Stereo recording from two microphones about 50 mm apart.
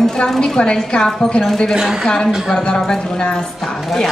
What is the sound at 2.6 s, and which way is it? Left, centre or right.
A woman's voice, centre.